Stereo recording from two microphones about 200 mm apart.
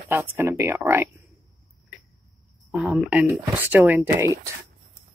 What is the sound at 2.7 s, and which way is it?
Speech, 5° right (ahead or behind).